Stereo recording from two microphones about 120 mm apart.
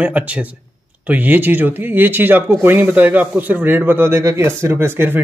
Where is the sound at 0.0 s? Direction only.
10° right (ahead or behind).